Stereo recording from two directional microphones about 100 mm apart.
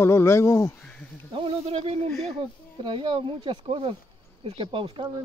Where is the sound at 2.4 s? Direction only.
60° right (ahead or behind).